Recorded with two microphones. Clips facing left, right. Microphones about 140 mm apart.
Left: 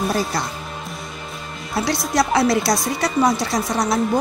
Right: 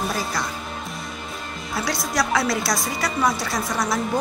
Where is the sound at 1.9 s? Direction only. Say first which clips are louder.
Left 4 dB; 30° left (ahead or behind).